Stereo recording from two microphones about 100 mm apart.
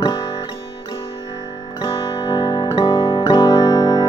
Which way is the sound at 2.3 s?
50° left (ahead or behind).